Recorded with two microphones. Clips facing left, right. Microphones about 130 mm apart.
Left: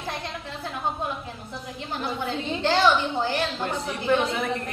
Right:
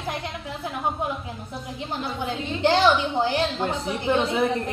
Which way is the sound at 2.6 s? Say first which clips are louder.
Right 2 dB; 15° right (ahead or behind).